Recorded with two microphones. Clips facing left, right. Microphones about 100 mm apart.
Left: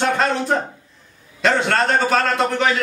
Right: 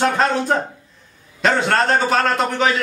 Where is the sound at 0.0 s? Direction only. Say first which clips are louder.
Right 1 dB; centre (ahead or behind).